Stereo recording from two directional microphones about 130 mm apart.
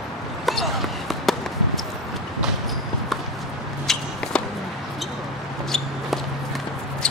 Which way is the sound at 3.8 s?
5° left (ahead or behind).